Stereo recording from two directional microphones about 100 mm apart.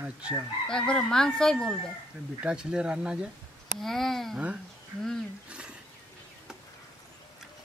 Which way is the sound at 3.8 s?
5° left (ahead or behind).